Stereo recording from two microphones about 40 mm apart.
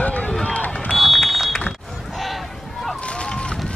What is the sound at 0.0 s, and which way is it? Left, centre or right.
Run, left.